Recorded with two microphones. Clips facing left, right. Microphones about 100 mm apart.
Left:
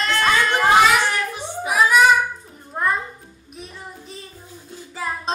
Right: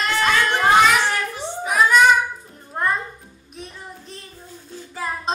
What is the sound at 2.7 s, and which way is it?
Music, centre (ahead or behind).